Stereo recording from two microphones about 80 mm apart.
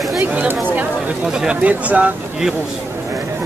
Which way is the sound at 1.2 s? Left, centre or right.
Centre.